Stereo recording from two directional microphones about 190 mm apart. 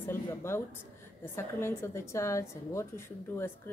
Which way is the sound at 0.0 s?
10° left (ahead or behind).